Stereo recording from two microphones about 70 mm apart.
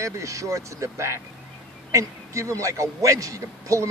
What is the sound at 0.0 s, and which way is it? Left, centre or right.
A man's voice, right.